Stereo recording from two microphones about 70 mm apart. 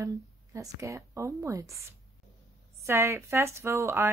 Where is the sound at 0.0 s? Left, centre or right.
Right.